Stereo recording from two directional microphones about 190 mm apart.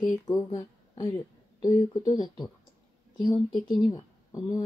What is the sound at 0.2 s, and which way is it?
Speech, 20° left (ahead or behind).